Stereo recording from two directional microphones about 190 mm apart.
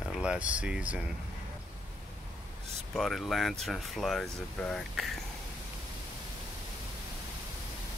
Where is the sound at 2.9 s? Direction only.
Centre (ahead or behind).